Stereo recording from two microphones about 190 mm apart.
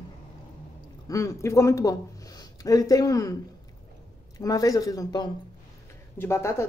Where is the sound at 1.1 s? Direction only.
15° left (ahead or behind).